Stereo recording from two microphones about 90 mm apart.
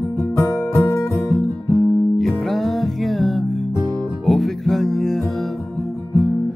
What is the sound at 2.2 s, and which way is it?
Music, centre (ahead or behind).